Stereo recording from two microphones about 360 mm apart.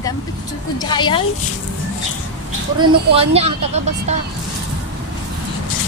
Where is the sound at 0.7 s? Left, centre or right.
Centre.